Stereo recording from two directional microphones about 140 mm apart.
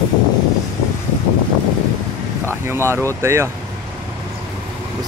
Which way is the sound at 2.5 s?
20° right (ahead or behind).